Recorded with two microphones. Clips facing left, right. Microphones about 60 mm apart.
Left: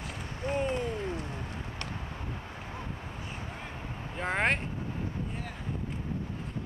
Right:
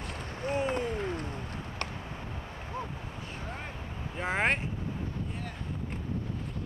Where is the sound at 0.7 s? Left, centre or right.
Right.